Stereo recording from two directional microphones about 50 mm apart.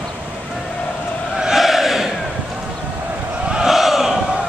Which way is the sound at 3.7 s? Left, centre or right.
Centre.